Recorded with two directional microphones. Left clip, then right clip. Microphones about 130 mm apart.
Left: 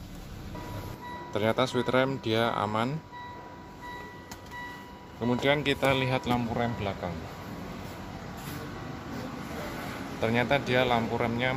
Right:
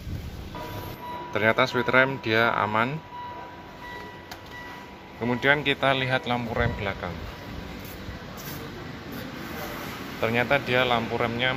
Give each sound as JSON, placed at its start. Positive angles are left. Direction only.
{"t": 1.3, "sound": "speech", "side_deg": 15}
{"t": 5.2, "sound": "speech", "side_deg": 20}
{"t": 6.0, "sound": "speech", "side_deg": 35}
{"t": 10.2, "sound": "speech", "side_deg": 10}